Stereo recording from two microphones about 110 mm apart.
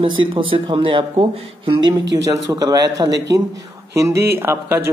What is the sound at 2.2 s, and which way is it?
A man's voice, 35° right (ahead or behind).